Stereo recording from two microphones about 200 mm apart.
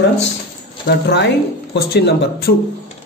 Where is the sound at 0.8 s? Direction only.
55° left (ahead or behind).